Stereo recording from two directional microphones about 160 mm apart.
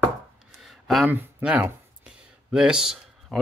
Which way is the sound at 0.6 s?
Centre (ahead or behind).